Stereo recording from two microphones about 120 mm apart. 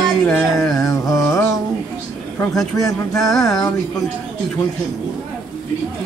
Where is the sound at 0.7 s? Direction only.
30° left (ahead or behind).